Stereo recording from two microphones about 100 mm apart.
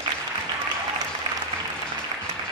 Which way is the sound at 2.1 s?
55° right (ahead or behind).